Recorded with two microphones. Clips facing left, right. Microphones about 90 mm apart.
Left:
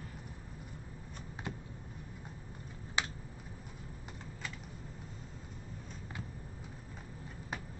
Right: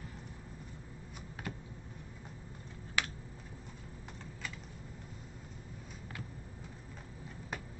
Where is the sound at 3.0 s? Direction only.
25° left (ahead or behind).